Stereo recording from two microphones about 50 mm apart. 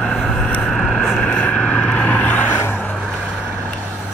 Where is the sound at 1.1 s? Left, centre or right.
Centre.